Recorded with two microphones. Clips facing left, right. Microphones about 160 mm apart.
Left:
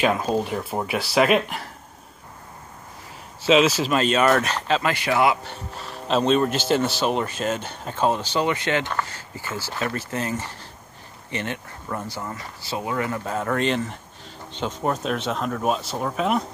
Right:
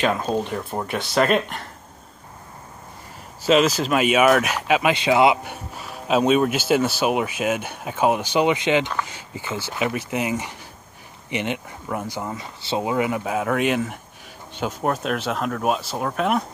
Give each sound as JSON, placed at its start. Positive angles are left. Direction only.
{"t": 0.0, "sound": "speech", "side_deg": 5}
{"t": 3.4, "sound": "speech", "side_deg": 0}
{"t": 3.9, "sound": "speech", "side_deg": -10}